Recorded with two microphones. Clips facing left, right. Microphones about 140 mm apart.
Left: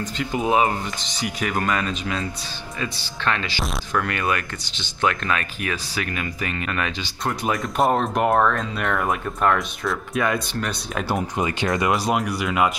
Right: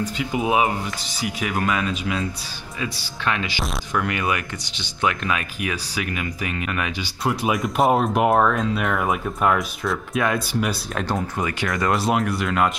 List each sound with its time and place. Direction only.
0.0 s speech: 5° right (ahead or behind)
11.1 s speech: 20° left (ahead or behind)
11.9 s speech: centre (ahead or behind)